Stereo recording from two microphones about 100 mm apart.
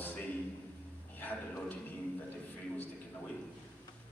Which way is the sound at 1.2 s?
15° left (ahead or behind).